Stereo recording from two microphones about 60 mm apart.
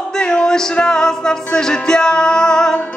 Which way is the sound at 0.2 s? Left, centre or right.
Centre.